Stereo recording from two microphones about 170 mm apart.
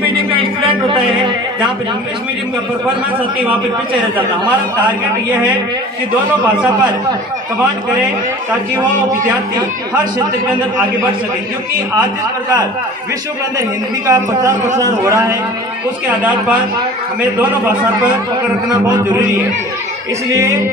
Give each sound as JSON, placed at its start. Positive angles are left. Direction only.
{"t": 0.1, "sound": "a sound", "side_deg": -30}
{"t": 6.4, "sound": "a man's voice", "side_deg": -10}
{"t": 13.6, "sound": "a man's voice", "side_deg": -20}
{"t": 16.1, "sound": "a man's voice", "side_deg": -10}
{"t": 18.7, "sound": "a man's voice", "side_deg": -20}
{"t": 20.2, "sound": "a man's voice", "side_deg": -15}